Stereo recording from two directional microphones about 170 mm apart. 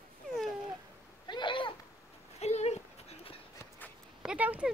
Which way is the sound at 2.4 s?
40° left (ahead or behind).